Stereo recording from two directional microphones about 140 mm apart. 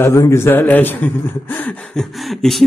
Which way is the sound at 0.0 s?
20° left (ahead or behind).